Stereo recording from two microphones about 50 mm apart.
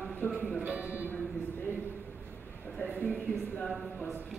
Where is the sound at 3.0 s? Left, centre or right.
Left.